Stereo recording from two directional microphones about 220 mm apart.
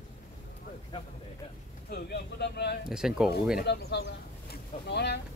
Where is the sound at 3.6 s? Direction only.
50° left (ahead or behind).